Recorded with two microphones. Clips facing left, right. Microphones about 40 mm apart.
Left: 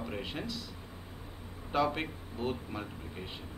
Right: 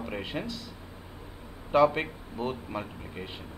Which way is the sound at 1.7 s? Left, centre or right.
Right.